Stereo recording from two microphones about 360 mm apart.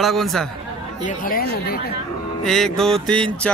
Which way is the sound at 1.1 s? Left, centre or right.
Left.